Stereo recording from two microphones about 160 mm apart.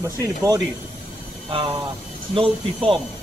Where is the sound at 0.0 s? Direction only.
20° right (ahead or behind).